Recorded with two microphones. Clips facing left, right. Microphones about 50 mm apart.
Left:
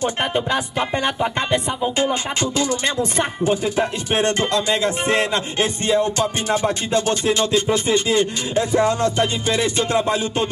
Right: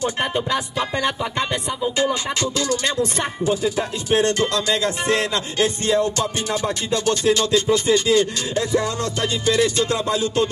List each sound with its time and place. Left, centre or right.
0.0 s music: left
2.5 s music: left
3.4 s music: left